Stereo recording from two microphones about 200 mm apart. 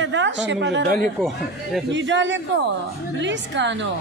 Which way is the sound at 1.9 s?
65° right (ahead or behind).